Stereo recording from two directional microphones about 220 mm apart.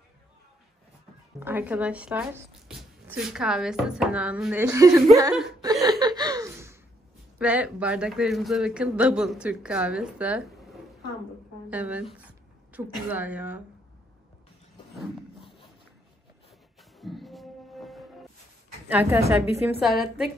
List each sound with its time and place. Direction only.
1.4 s speech: 10° right (ahead or behind)
11.7 s a sound: 5° right (ahead or behind)
13.1 s a woman's voice: 5° right (ahead or behind)
17.0 s music: centre (ahead or behind)
18.9 s a woman's voice: 10° right (ahead or behind)
19.8 s speech: centre (ahead or behind)